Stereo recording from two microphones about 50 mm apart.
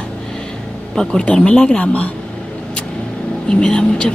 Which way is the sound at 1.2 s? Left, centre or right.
Centre.